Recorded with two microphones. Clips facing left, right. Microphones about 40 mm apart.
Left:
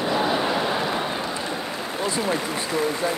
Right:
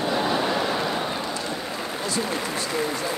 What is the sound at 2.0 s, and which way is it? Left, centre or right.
Speech, left.